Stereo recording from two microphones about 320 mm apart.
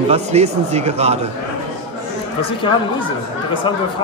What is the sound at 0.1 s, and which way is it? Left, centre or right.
A man's voice, centre.